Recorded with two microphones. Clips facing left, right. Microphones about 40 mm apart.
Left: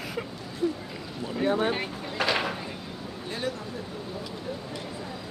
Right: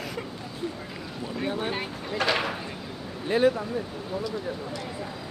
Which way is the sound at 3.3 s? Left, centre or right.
Centre.